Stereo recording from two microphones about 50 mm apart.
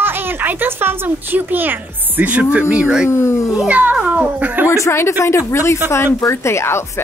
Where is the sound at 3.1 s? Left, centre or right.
Left.